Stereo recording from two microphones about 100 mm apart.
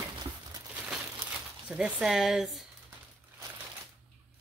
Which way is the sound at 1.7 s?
10° right (ahead or behind).